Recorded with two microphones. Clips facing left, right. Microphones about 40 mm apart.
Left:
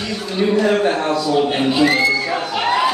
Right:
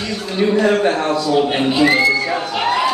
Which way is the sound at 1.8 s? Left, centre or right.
Centre.